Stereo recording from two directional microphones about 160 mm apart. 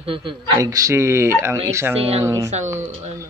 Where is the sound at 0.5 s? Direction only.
20° right (ahead or behind).